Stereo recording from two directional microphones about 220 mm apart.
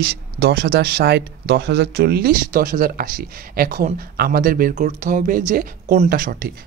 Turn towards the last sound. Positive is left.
turn(degrees=-40)  # may be behind; listen again after turning